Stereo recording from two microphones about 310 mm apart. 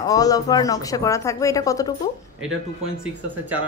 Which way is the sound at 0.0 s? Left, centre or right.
Centre.